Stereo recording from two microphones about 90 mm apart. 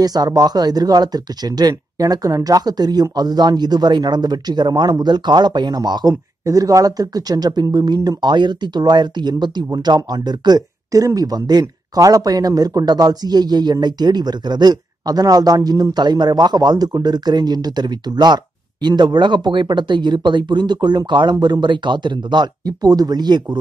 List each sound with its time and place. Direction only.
0.0 s speech: 45° right (ahead or behind)